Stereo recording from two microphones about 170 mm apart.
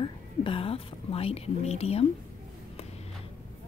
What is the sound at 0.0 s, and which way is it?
A woman's voice, 30° left (ahead or behind).